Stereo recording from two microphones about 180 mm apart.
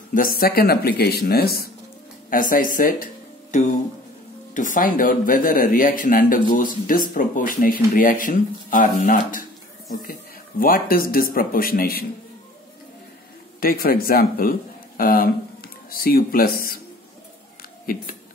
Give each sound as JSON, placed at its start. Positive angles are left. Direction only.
{"t": 0.1, "sound": "speech", "side_deg": 50}
{"t": 2.2, "sound": "speech", "side_deg": 50}
{"t": 4.6, "sound": "speech", "side_deg": 50}
{"t": 10.6, "sound": "speech", "side_deg": 50}
{"t": 13.6, "sound": "speech", "side_deg": 55}
{"t": 17.6, "sound": "a sound", "side_deg": 55}